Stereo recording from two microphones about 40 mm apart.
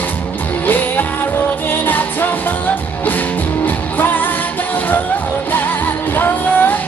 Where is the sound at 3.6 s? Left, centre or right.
Left.